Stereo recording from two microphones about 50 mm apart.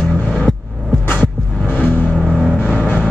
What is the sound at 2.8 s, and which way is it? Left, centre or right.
Music, left.